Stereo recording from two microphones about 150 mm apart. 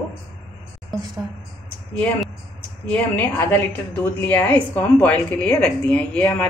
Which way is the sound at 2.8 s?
10° left (ahead or behind).